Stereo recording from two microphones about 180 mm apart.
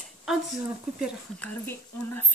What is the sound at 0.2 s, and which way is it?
Speech, 5° right (ahead or behind).